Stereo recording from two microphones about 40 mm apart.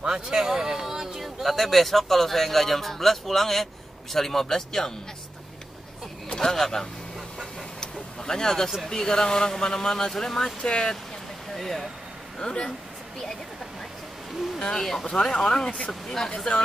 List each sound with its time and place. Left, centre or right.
0.0 s speech: centre
6.2 s a sound: left
6.5 s speech: centre
7.8 s vehicle: centre
8.8 s speech: centre
11.5 s speech: centre
12.4 s speech: centre
14.6 s speech: centre